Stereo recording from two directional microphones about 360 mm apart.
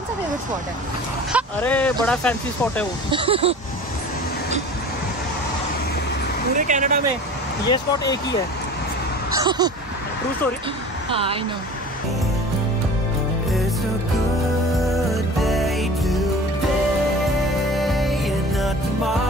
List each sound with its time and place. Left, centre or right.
1.3 s speech: centre
3.1 s speech: centre
6.5 s speech: right
7.6 s speech: centre
9.4 s speech: centre
11.1 s speech: centre
14.9 s music: centre
17.7 s music: centre